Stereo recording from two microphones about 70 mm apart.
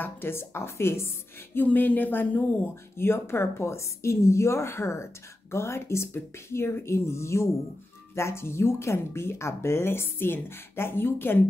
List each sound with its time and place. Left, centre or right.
0.0 s a woman's voice: left